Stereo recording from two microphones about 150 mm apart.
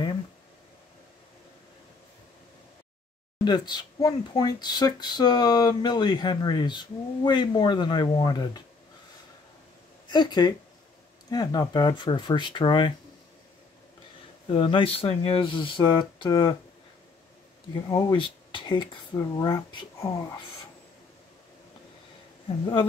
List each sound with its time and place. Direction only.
3.4 s speech: 30° left (ahead or behind)
10.0 s speech: 30° left (ahead or behind)
14.5 s speech: 35° left (ahead or behind)
17.8 s speech: 25° left (ahead or behind)